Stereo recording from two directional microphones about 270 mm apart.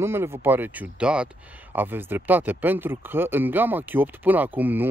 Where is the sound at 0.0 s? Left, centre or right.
Centre.